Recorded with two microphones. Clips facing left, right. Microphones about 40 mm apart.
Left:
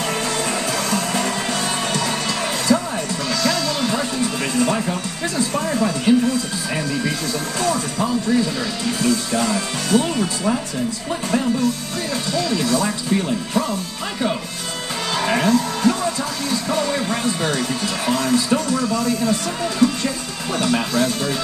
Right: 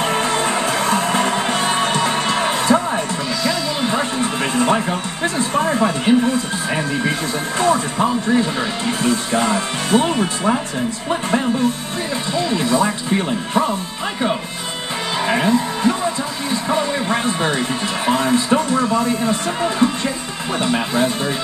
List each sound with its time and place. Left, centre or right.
0.0 s music: right
3.4 s a man's voice: right
15.1 s music: centre
16.6 s a man's voice: right